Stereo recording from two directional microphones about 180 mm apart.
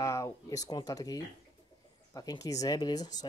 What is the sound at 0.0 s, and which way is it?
Speech, 20° left (ahead or behind).